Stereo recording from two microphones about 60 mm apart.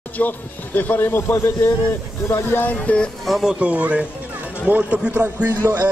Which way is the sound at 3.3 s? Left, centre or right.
Centre.